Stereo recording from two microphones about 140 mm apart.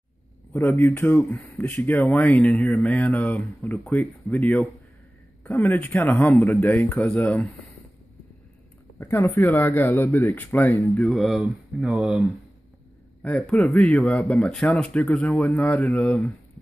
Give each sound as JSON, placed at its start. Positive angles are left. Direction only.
{"t": 0.5, "sound": "speech", "side_deg": 20}
{"t": 9.1, "sound": "speech", "side_deg": 10}
{"t": 11.0, "sound": "speech", "side_deg": 0}
{"t": 13.2, "sound": "speech", "side_deg": 10}